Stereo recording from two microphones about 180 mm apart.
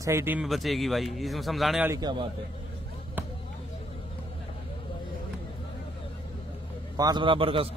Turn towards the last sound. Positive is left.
turn(degrees=-30)  # may be behind; listen again after turning